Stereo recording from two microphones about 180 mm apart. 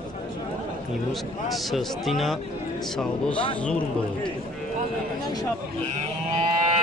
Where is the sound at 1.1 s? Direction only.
Centre (ahead or behind).